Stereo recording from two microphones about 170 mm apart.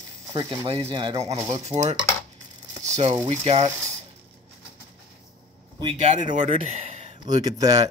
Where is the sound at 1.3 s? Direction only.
15° right (ahead or behind).